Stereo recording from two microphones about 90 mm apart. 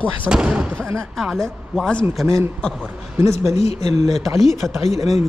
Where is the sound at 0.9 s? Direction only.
5° left (ahead or behind).